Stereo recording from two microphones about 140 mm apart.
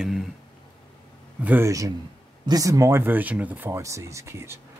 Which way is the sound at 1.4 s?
15° right (ahead or behind).